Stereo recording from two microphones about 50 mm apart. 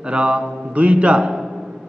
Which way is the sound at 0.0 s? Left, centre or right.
Right.